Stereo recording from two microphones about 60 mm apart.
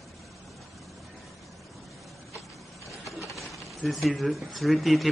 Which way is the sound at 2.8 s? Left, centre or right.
Centre.